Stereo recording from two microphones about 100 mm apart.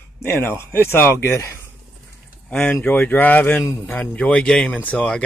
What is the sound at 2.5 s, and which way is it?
Speech, 15° left (ahead or behind).